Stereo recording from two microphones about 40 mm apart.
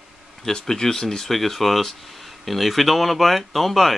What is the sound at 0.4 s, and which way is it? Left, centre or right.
Speech, centre.